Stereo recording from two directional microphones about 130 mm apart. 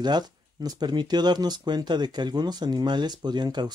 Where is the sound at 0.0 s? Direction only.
30° right (ahead or behind).